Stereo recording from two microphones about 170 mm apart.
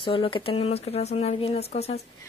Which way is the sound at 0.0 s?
30° left (ahead or behind).